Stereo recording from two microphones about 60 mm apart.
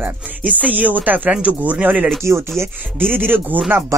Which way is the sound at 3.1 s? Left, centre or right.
Right.